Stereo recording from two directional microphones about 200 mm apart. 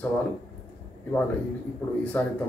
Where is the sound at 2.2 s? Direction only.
5° left (ahead or behind).